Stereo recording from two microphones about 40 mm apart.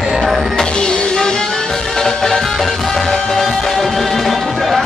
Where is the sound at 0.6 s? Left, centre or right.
Centre.